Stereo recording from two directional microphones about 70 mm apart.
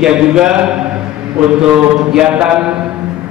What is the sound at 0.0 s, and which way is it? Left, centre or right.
A man's voice, centre.